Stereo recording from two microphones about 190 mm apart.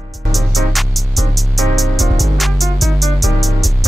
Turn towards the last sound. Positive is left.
turn(degrees=0)  # may be behind; listen again after turning